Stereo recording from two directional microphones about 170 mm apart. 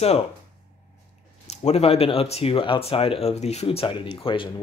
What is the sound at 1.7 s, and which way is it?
Speech, 35° left (ahead or behind).